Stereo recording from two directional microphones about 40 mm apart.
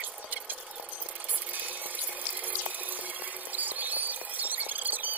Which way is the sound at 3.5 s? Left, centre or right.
Right.